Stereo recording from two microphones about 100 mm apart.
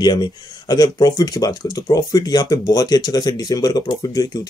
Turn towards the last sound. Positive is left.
turn(degrees=40)  # may be behind; listen again after turning